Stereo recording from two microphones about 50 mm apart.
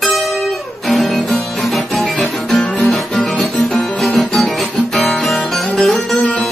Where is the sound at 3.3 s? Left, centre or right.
Centre.